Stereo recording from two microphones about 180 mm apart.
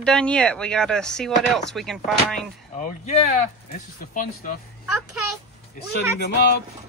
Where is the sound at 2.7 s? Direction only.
40° left (ahead or behind).